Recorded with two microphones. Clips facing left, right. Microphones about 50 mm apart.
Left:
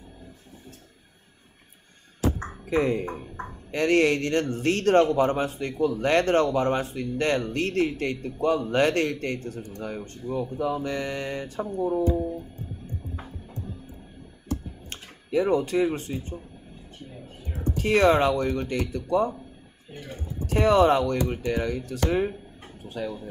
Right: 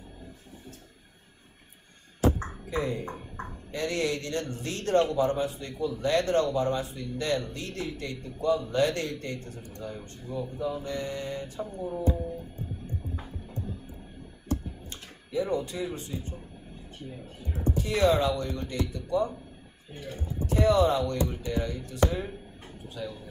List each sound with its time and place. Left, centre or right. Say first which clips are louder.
2.7 s speech: left 7 dB; left
14.9 s speech: left 8 dB; left
17.7 s speech: left 5 dB; left
20.4 s speech: left 4 dB; left